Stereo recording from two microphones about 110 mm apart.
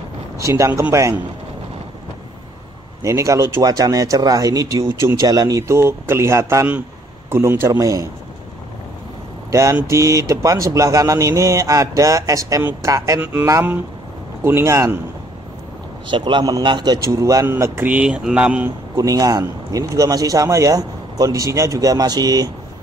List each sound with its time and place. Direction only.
0.4 s speech: 30° right (ahead or behind)
3.0 s speech: 30° right (ahead or behind)
9.5 s mantra: 30° right (ahead or behind)
9.8 s speech: 25° right (ahead or behind)
13.2 s speech: 15° right (ahead or behind)
16.1 s a man's voice: 45° right (ahead or behind)
17.5 s speech: 20° right (ahead or behind)
18.9 s speech: 30° right (ahead or behind)